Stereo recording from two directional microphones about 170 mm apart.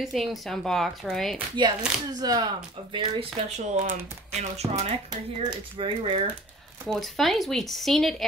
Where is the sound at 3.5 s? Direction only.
45° right (ahead or behind).